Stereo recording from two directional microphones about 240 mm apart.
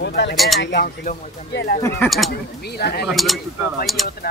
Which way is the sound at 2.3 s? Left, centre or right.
Left.